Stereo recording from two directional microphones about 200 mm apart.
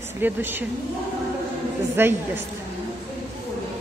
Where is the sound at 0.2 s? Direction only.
10° right (ahead or behind).